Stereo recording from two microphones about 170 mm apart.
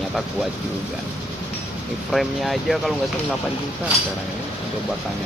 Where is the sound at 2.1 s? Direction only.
Centre (ahead or behind).